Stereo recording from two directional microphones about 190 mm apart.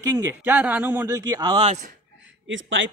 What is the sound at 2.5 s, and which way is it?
Speech, 80° right.